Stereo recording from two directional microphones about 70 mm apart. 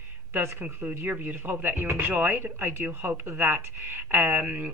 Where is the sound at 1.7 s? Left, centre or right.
Right.